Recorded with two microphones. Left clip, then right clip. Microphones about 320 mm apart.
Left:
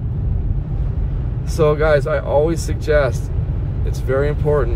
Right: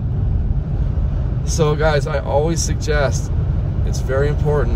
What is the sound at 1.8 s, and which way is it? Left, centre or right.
Speech, centre.